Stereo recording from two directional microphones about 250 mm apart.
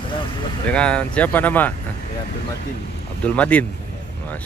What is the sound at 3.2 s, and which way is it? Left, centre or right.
Speech, centre.